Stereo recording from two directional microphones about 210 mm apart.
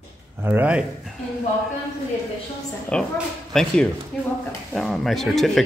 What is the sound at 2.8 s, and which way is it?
Speech, 5° left (ahead or behind).